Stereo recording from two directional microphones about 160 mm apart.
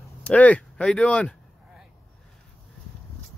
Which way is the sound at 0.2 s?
10° left (ahead or behind).